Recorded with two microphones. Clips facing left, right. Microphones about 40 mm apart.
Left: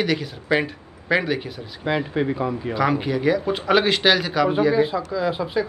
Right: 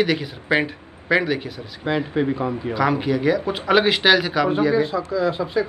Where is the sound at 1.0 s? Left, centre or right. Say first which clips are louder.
Right 2 dB; centre.